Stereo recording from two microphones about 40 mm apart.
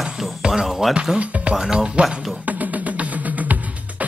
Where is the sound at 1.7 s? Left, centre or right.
Centre.